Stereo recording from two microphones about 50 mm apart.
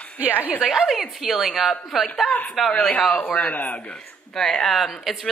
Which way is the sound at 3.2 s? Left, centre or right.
Left.